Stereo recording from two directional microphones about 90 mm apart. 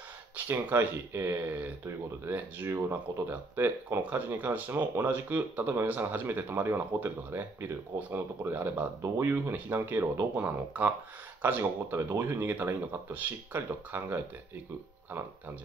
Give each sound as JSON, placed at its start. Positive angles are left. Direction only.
{"t": 0.5, "sound": "speech", "side_deg": -25}
{"t": 10.3, "sound": "speech", "side_deg": -20}